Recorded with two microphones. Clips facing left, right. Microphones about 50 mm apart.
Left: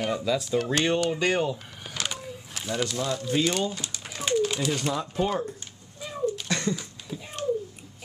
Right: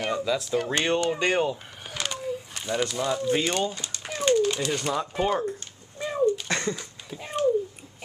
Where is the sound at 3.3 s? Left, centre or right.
Centre.